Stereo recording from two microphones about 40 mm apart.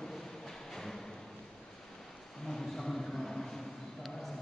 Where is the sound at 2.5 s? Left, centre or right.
Centre.